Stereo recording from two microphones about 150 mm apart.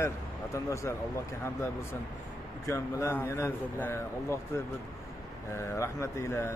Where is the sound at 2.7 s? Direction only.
20° left (ahead or behind).